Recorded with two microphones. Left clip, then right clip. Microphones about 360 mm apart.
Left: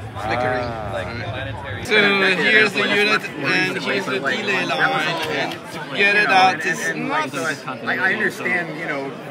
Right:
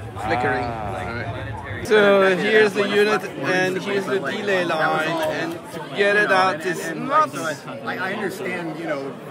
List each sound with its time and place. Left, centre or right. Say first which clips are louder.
0.3 s speech: even; centre
1.9 s speech: right 1 dB; centre